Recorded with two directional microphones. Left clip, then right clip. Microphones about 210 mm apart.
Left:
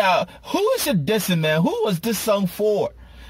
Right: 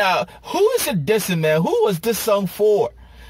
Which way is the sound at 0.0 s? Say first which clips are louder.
Even; 5° right (ahead or behind).